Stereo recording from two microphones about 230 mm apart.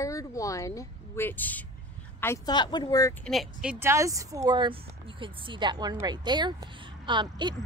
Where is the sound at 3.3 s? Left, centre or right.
Centre.